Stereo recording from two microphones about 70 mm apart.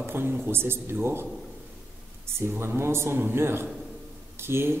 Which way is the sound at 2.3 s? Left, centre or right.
Right.